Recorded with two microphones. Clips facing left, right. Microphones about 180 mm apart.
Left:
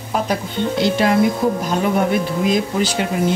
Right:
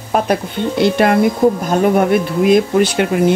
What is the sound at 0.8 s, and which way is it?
Speech, 55° right (ahead or behind).